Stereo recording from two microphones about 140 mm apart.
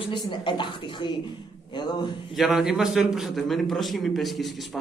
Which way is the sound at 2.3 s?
Centre (ahead or behind).